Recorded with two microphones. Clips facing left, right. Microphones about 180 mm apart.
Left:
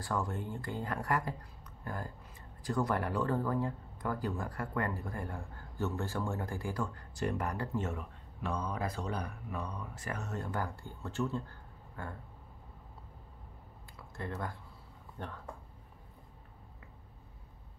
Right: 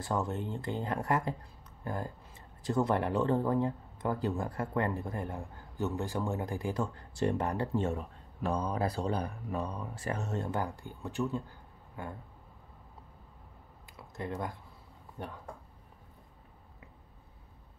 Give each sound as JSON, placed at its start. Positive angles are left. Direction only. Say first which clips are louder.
{"t": 0.0, "sound": "speech", "louder": "right 3 dB", "side_deg": -20}
{"t": 13.9, "sound": "speech", "louder": "right 3 dB", "side_deg": -20}